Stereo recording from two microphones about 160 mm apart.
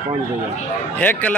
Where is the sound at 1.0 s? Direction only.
10° left (ahead or behind).